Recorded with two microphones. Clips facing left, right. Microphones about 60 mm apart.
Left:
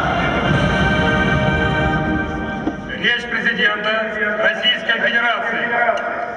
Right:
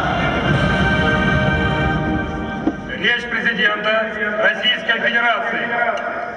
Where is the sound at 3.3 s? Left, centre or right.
Centre.